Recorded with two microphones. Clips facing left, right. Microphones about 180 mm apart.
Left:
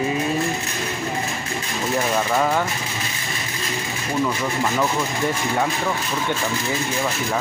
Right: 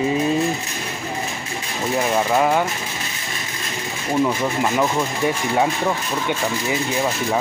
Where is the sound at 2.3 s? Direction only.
10° right (ahead or behind).